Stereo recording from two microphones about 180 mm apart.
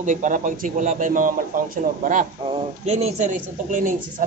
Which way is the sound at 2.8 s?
35° right (ahead or behind).